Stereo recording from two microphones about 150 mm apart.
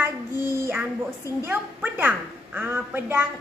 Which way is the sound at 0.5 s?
15° right (ahead or behind).